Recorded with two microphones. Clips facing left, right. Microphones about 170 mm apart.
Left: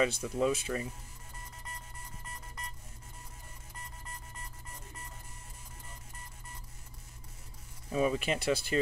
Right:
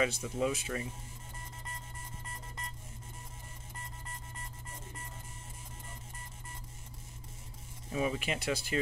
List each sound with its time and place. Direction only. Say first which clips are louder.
0.0 s speech: left 2 dB; 35° left (ahead or behind)
7.9 s speech: left 4 dB; 40° left (ahead or behind)